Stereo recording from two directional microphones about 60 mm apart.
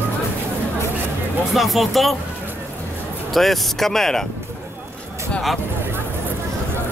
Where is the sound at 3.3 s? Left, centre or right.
Centre.